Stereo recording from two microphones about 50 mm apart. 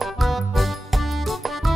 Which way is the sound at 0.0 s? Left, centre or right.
Centre.